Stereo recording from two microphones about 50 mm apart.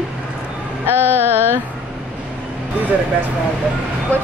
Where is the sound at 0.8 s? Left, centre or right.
Right.